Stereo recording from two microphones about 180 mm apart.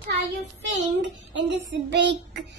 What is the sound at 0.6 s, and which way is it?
A child's voice, 85° right.